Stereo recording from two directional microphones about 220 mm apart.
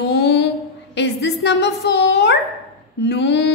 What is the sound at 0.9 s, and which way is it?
A woman's voice, 50° left (ahead or behind).